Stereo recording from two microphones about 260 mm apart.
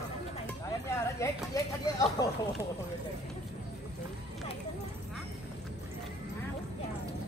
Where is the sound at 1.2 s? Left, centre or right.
Centre.